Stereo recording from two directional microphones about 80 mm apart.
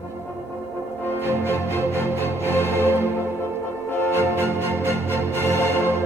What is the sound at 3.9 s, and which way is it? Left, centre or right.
Music, left.